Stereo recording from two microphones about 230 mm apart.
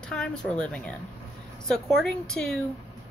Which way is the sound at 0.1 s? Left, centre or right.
Centre.